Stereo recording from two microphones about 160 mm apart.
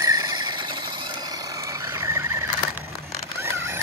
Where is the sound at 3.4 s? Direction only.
15° right (ahead or behind).